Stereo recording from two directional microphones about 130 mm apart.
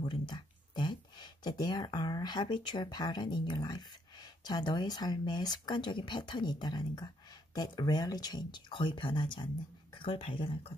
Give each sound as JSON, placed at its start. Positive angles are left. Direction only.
{"t": 0.0, "sound": "speech", "side_deg": 35}